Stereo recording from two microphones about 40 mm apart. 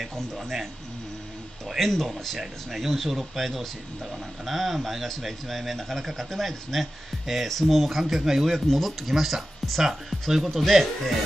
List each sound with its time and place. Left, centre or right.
0.0 s speech: centre
1.8 s speech: centre
8.6 s speech: centre